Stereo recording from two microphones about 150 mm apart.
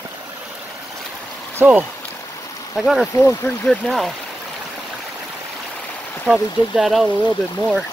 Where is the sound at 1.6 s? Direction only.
10° right (ahead or behind).